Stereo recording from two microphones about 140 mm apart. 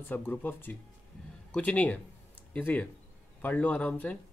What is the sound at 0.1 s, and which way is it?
Speech, 15° left (ahead or behind).